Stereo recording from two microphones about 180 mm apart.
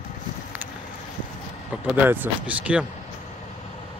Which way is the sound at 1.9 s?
10° right (ahead or behind).